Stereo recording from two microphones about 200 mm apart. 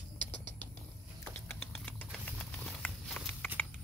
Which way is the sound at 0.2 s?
10° left (ahead or behind).